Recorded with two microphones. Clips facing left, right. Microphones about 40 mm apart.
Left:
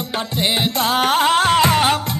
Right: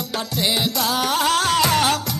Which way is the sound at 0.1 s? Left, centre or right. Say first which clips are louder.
Left 2 dB; left.